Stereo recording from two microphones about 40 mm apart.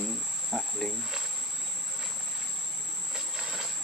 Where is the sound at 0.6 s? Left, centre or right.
Centre.